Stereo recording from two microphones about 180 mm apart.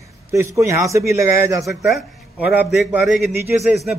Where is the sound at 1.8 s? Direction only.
Centre (ahead or behind).